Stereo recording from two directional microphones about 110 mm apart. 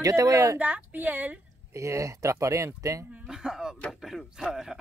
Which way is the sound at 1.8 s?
30° right (ahead or behind).